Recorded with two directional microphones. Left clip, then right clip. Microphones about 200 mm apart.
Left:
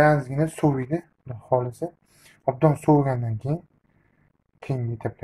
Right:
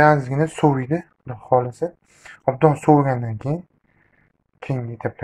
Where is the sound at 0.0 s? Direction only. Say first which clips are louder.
Right 4 dB; 10° right (ahead or behind).